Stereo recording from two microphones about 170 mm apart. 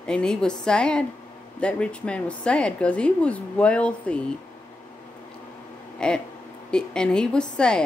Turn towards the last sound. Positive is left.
turn(degrees=5)  # may be behind; listen again after turning